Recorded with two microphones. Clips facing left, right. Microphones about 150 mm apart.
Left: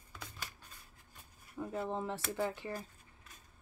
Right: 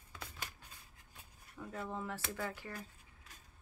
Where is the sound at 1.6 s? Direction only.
25° left (ahead or behind).